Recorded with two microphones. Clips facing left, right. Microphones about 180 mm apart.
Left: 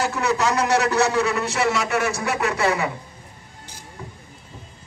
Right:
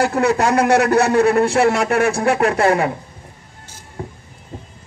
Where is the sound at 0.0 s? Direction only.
55° right (ahead or behind).